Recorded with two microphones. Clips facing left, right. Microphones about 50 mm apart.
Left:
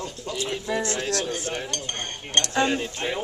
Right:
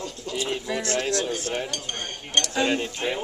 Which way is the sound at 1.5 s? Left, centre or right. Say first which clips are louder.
Right 1 dB; centre.